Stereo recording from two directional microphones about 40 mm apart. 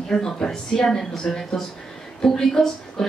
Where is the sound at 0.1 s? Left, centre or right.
Centre.